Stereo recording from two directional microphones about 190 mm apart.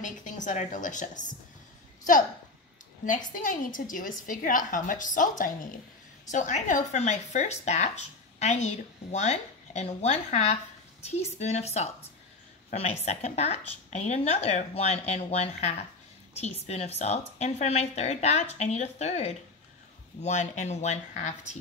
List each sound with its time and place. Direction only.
0.0 s a woman's voice: 40° left (ahead or behind)
3.1 s a woman's voice: 45° left (ahead or behind)